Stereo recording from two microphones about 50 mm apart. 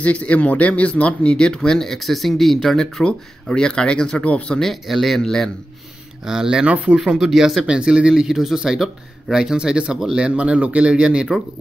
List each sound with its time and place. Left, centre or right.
0.0 s speech: left
4.6 s speech: centre
6.2 s speech: centre
6.6 s speech: right
7.0 s speech: centre